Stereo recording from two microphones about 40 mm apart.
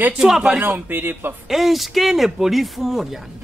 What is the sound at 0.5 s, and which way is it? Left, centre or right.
Speech, right.